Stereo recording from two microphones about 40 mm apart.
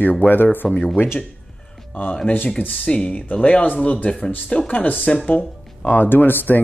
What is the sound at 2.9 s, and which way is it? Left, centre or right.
Speech, left.